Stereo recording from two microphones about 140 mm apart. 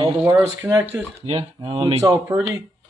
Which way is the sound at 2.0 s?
20° right (ahead or behind).